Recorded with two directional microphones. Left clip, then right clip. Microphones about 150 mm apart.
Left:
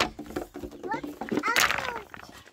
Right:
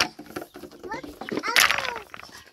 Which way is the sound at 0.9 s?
40° left (ahead or behind).